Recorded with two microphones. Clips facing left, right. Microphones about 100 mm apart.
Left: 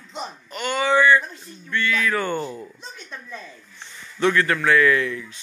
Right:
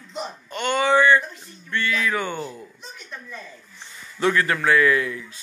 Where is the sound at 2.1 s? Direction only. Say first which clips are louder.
Left 3 dB; 10° right (ahead or behind).